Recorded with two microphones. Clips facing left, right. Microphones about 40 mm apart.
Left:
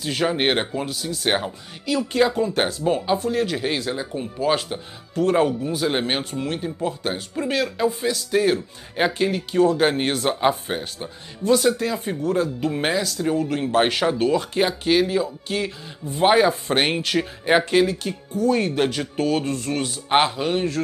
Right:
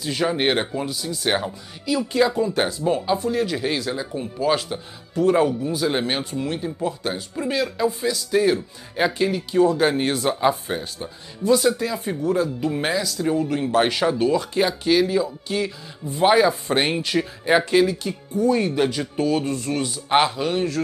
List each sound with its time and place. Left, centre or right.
0.0 s speech: left
0.8 s speech: left
1.2 s speech: left
1.9 s speech: left
20.1 s speech: left